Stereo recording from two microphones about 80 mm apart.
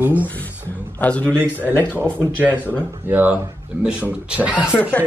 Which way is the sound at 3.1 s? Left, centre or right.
Right.